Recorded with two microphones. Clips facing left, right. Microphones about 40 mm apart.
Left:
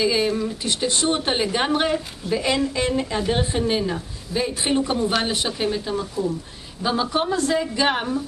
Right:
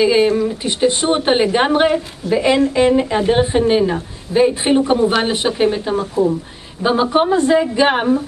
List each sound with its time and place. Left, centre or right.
0.0 s a woman's voice: right